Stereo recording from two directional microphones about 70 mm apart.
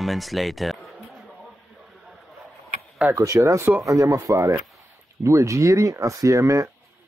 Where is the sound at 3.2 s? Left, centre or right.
Right.